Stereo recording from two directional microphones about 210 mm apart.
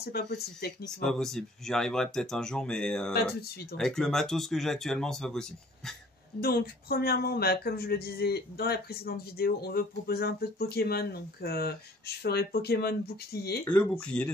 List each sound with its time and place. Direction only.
0.0 s speech: 50° left (ahead or behind)
0.8 s speech: centre (ahead or behind)
6.4 s speech: 45° left (ahead or behind)
13.7 s speech: 5° left (ahead or behind)